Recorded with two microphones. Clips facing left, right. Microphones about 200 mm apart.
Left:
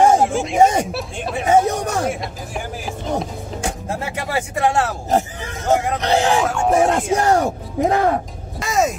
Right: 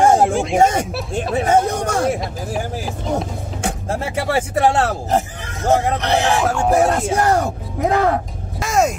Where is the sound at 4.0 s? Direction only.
30° right (ahead or behind).